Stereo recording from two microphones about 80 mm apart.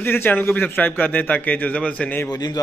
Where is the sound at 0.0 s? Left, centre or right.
Left.